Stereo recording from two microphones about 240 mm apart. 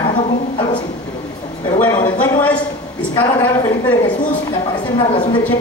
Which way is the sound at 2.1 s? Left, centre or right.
Centre.